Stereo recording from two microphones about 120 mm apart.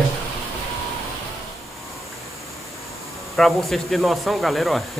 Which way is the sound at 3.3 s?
Centre (ahead or behind).